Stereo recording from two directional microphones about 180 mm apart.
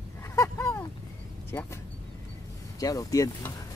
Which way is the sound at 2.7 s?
20° left (ahead or behind).